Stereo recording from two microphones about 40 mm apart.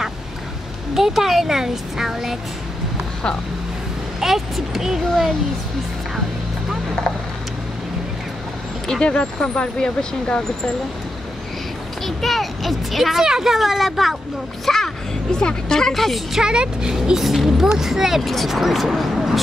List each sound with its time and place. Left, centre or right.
0.9 s speech: centre
4.2 s speech: centre
9.0 s speech: left
12.2 s speech: centre
14.7 s speech: centre
15.9 s speech: centre
16.3 s speech: centre
17.2 s speech: centre
18.2 s speech: centre